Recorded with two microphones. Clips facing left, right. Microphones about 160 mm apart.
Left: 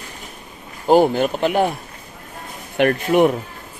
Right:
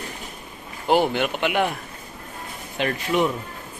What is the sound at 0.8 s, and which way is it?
Speech, 40° left (ahead or behind).